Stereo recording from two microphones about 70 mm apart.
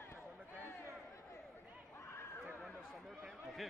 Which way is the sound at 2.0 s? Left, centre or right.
Left.